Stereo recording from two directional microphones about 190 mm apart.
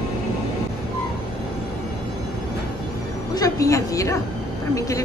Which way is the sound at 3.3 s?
20° left (ahead or behind).